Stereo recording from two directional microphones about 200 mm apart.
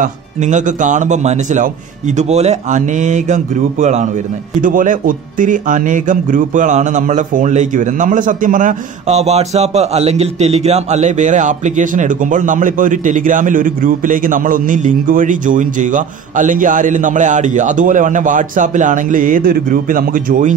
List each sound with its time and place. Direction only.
0.0 s speech: 40° right (ahead or behind)